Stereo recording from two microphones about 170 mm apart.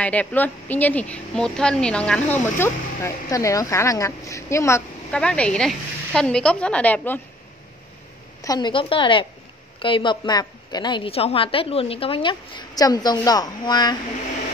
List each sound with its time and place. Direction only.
0.0 s speech: 10° left (ahead or behind)
5.1 s speech: 5° left (ahead or behind)
8.4 s a woman's voice: 25° left (ahead or behind)